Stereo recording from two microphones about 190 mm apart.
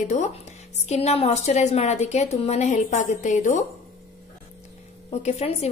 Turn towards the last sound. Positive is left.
turn(degrees=35)  # may be behind; listen again after turning